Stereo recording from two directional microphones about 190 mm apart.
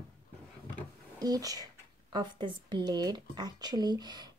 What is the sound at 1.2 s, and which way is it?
Speech, 20° right (ahead or behind).